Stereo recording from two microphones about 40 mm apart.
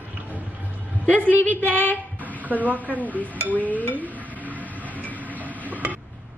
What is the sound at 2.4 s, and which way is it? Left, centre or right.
Speech, right.